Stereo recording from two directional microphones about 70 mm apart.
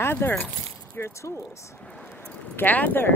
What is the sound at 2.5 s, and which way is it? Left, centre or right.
Speech, left.